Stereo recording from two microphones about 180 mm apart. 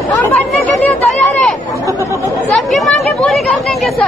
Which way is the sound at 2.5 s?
Centre (ahead or behind).